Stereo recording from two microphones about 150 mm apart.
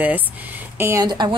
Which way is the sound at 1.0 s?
30° right (ahead or behind).